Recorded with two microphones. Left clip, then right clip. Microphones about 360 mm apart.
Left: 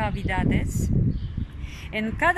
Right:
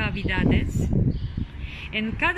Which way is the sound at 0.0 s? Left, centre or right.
Centre.